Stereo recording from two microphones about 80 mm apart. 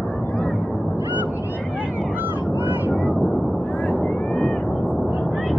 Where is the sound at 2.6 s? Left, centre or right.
Right.